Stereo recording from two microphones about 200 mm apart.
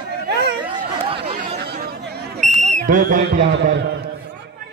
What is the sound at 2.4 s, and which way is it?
Speech, 35° right (ahead or behind).